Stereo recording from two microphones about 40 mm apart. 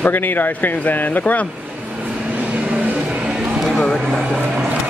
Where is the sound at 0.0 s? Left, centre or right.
Left.